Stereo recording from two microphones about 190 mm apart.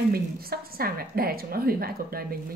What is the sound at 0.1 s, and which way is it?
A woman's voice, 50° right (ahead or behind).